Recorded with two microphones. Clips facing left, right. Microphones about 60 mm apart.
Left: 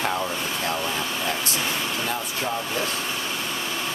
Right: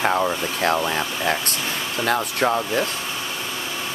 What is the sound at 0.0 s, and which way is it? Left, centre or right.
Speech, right.